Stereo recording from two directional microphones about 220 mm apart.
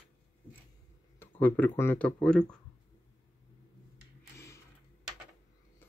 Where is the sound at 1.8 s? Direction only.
10° left (ahead or behind).